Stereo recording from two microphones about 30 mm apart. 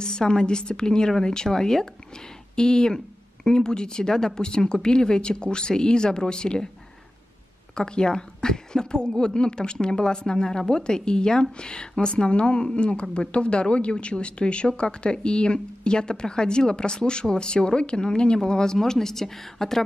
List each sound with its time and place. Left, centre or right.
0.0 s a woman's voice: left
7.7 s a woman's voice: left
18.8 s speech: centre